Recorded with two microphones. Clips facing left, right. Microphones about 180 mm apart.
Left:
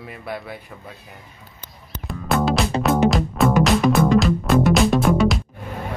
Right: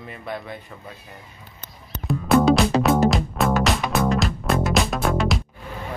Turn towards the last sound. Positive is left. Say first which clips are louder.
# left 5 dB
turn(degrees=0)  # may be behind; listen again after turning